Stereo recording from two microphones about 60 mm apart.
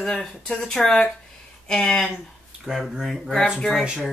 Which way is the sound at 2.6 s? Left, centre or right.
Centre.